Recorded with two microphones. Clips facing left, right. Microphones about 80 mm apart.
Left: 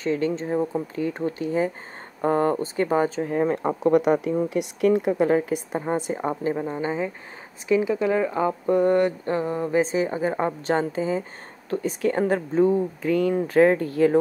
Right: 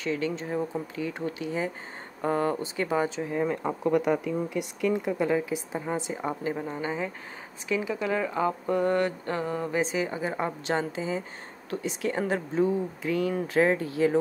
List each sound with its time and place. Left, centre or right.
0.0 s speech: left
3.8 s speech: left
4.6 s a woman's voice: left
6.5 s a woman's voice: left